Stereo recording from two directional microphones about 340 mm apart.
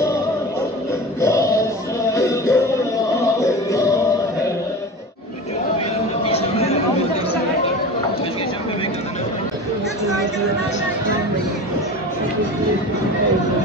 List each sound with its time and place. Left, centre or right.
1.2 s a sound: centre
2.1 s music: centre
6.2 s chatter: centre